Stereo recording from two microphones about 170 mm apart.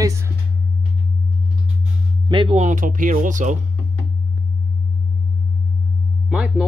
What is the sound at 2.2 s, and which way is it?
Speech, 30° right (ahead or behind).